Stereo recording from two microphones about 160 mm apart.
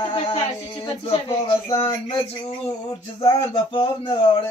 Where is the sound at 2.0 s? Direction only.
30° left (ahead or behind).